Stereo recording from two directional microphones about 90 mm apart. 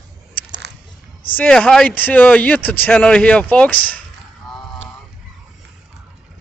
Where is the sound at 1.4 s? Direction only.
5° left (ahead or behind).